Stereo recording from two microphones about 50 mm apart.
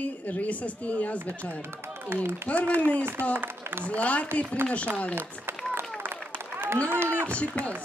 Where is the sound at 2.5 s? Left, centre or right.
Left.